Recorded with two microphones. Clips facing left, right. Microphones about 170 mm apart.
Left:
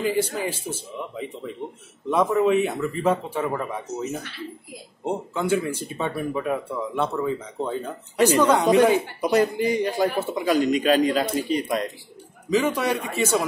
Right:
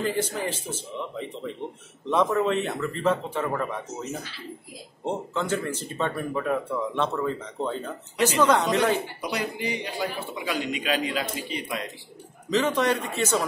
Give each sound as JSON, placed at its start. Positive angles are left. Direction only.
{"t": 0.0, "sound": "speech", "side_deg": 10}
{"t": 9.2, "sound": "a man's voice", "side_deg": 45}
{"t": 12.4, "sound": "speech", "side_deg": 10}